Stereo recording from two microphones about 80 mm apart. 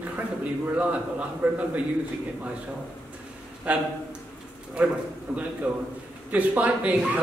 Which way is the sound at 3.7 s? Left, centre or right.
Centre.